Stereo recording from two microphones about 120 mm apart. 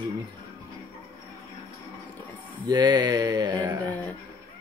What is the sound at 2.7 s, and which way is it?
Speech, 35° right (ahead or behind).